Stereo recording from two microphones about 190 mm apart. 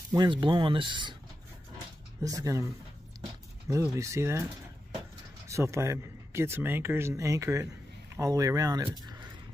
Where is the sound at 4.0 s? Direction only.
15° right (ahead or behind).